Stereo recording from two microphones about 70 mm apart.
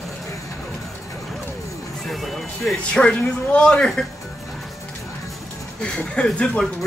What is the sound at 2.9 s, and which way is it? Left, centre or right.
Speech, centre.